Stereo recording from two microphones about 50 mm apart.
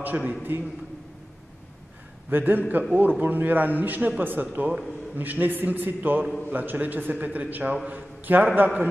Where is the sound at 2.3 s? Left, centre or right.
Right.